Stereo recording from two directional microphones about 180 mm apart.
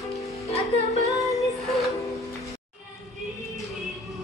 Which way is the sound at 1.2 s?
Centre (ahead or behind).